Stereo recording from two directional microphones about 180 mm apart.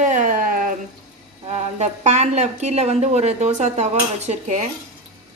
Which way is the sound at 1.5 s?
40° right (ahead or behind).